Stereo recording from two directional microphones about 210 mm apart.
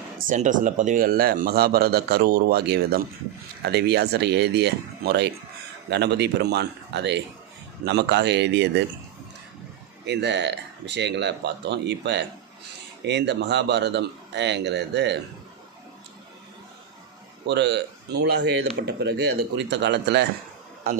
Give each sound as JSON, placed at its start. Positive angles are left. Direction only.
{"t": 0.3, "sound": "a man's voice", "side_deg": -40}
{"t": 10.0, "sound": "speech", "side_deg": -55}
{"t": 17.5, "sound": "speech", "side_deg": -55}
{"t": 20.9, "sound": "speech", "side_deg": -40}